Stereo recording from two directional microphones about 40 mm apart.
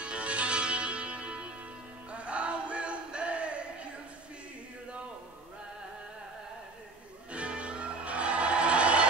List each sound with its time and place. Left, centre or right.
0.0 s music: right
7.3 s music: right